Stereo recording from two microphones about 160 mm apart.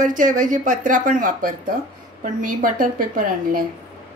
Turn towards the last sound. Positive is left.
turn(degrees=-60)  # may be behind; listen again after turning